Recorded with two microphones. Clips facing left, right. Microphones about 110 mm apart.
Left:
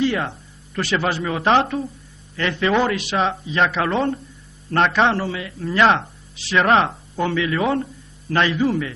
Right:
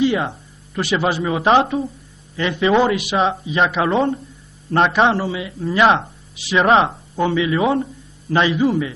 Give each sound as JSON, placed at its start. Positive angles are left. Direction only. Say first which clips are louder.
{"t": 0.0, "sound": "a man's voice", "louder": "right 3 dB", "side_deg": -15}
{"t": 3.8, "sound": "a man's voice", "louder": "right 3 dB", "side_deg": -5}